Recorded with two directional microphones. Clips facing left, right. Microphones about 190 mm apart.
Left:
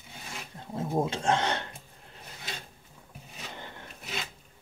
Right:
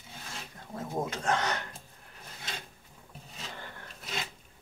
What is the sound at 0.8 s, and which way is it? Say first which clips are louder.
Speech: left 5 dB; 25° left (ahead or behind).